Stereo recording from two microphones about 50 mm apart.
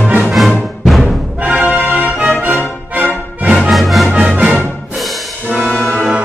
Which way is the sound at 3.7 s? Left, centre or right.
Centre.